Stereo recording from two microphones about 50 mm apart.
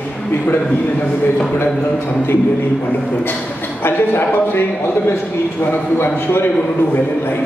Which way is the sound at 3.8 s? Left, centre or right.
Left.